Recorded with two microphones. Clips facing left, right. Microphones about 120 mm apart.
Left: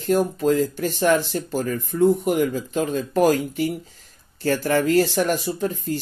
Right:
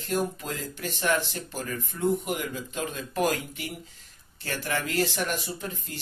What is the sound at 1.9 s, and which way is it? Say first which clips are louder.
Speech: left 10 dB; 55° left (ahead or behind).